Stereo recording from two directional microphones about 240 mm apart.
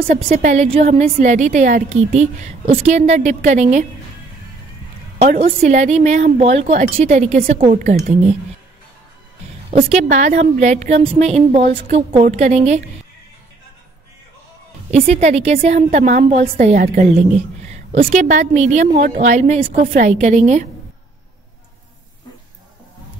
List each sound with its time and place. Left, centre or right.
0.0 s a woman's voice: right
5.2 s a woman's voice: right
9.7 s a woman's voice: right
14.9 s a woman's voice: right